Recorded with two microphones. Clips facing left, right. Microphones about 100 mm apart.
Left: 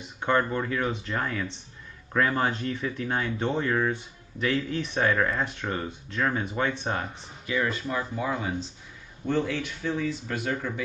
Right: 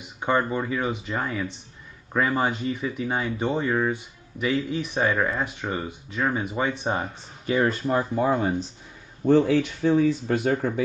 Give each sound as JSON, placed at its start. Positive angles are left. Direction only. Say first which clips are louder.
{"t": 0.2, "sound": "speech", "louder": "right 1 dB", "side_deg": -5}
{"t": 7.4, "sound": "speech", "louder": "right 5 dB", "side_deg": -40}